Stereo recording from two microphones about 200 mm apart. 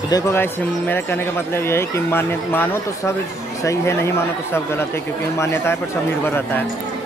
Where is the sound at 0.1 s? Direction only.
10° left (ahead or behind).